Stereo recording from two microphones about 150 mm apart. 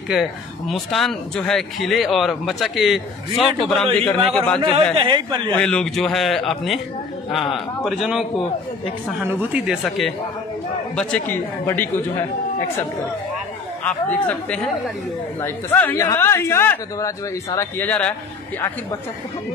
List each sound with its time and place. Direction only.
0.1 s speech: centre (ahead or behind)
4.6 s speech: 30° right (ahead or behind)
5.6 s speech: 5° left (ahead or behind)
7.8 s speech: centre (ahead or behind)
9.2 s speech: 15° right (ahead or behind)
11.0 s speech: 5° left (ahead or behind)
13.8 s speech: 10° left (ahead or behind)